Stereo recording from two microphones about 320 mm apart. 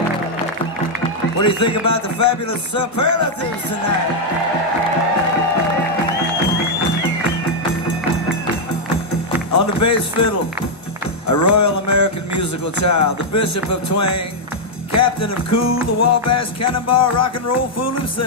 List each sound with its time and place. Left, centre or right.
1.4 s speech: left
8.9 s music: left
11.2 s speech: left
14.9 s music: left